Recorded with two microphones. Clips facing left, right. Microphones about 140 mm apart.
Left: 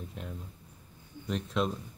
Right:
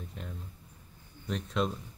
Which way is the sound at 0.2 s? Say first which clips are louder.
Left 2 dB; centre (ahead or behind).